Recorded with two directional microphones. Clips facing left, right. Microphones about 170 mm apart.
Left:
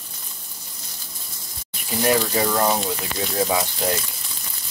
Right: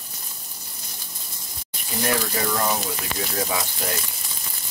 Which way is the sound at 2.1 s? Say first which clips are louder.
Left 5 dB; 25° left (ahead or behind).